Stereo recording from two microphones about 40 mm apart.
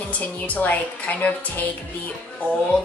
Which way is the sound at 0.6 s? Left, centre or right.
Left.